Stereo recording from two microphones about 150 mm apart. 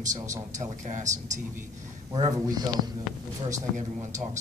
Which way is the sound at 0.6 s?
55° right (ahead or behind).